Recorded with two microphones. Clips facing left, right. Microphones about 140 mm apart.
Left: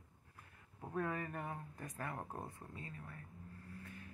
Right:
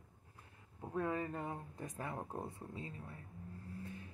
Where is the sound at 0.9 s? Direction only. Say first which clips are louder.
Right 2 dB; 20° right (ahead or behind).